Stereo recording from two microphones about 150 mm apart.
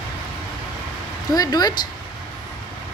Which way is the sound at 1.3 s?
25° left (ahead or behind).